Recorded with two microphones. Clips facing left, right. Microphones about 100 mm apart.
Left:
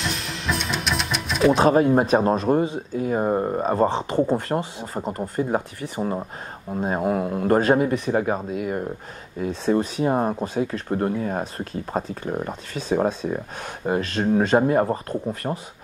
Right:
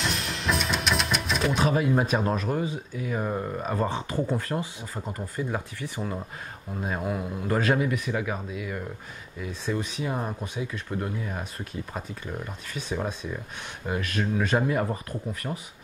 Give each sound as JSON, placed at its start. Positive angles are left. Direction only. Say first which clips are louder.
{"t": 0.0, "sound": "music", "louder": "left 1 dB", "side_deg": 0}
{"t": 1.5, "sound": "speech", "louder": "left 8 dB", "side_deg": 40}
{"t": 7.2, "sound": "speech", "louder": "left 8 dB", "side_deg": 50}
{"t": 7.6, "sound": "speech", "louder": "left 6 dB", "side_deg": 35}